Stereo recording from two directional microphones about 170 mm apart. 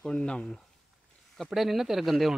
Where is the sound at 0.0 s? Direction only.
5° left (ahead or behind).